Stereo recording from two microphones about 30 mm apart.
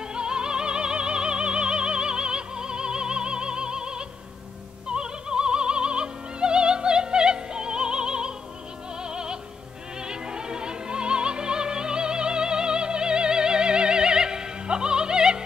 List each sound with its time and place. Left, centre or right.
0.1 s opera: right
9.0 s music: right